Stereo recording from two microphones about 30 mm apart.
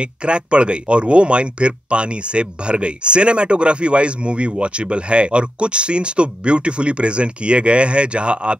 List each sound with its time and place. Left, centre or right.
0.0 s speech: right